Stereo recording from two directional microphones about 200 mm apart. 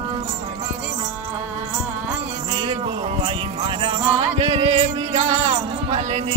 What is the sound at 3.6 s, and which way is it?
Music, 25° right (ahead or behind).